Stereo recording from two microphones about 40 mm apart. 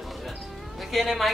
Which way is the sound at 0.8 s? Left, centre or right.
Centre.